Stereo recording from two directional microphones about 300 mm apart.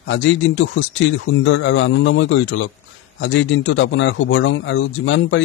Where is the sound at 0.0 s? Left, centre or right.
Left.